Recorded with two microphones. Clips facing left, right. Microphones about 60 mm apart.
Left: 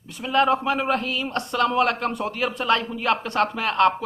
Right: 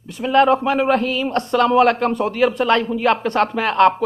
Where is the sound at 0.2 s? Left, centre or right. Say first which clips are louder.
Right 7 dB; right.